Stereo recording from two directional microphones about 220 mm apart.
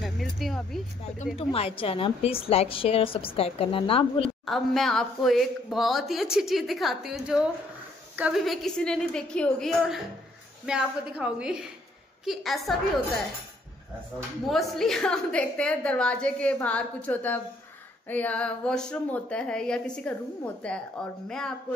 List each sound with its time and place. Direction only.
0.0 s a sound: centre (ahead or behind)
1.4 s a woman's voice: 25° left (ahead or behind)
4.5 s speech: centre (ahead or behind)
14.5 s speech: centre (ahead or behind)